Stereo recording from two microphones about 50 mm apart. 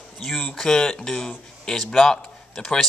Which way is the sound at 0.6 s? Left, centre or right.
Centre.